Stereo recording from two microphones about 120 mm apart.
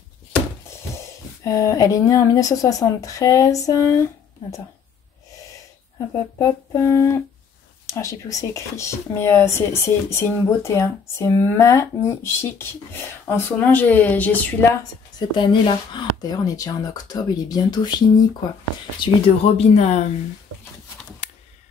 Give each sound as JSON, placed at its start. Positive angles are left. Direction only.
{"t": 0.7, "sound": "speech", "side_deg": 25}
{"t": 6.3, "sound": "speech", "side_deg": 25}
{"t": 14.8, "sound": "speech", "side_deg": 40}
{"t": 18.9, "sound": "speech", "side_deg": 55}